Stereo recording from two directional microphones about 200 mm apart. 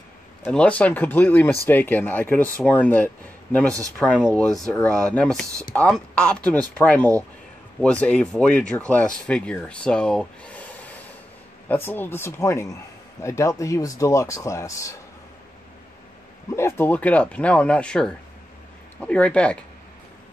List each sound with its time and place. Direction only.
0.5 s speech: 5° left (ahead or behind)
16.4 s speech: 10° left (ahead or behind)